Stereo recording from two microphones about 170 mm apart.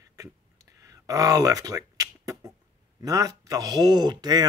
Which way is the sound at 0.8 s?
20° right (ahead or behind).